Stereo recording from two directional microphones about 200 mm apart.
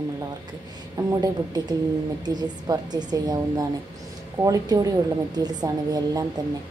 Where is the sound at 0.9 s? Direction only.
20° right (ahead or behind).